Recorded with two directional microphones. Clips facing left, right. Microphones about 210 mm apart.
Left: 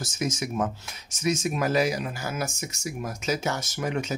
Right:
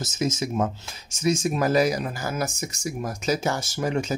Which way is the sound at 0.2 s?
25° right (ahead or behind).